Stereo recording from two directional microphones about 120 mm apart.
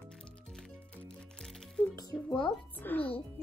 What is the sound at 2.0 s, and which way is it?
Music, 35° left (ahead or behind).